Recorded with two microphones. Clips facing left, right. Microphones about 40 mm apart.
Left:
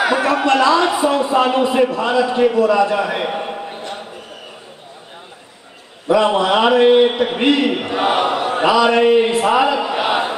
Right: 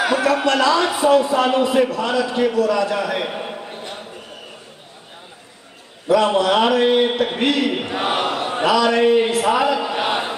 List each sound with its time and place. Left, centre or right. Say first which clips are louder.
0.0 s a sound: left 2 dB; left
0.5 s a man's voice: left 5 dB; left
6.0 s a man's voice: left 1 dB; centre
7.7 s a man's voice: left 4 dB; centre
8.6 s a man's voice: left 3 dB; left
9.0 s a man's voice: left 2 dB; centre